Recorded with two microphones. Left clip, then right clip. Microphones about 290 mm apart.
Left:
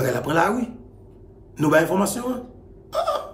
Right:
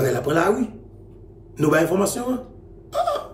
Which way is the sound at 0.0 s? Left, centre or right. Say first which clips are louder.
Right 1 dB; centre.